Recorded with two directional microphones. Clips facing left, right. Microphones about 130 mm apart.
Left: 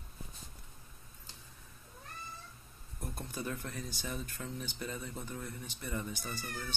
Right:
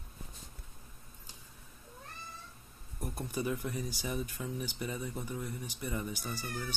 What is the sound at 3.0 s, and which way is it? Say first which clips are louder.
Speech: right 5 dB; 15° right (ahead or behind).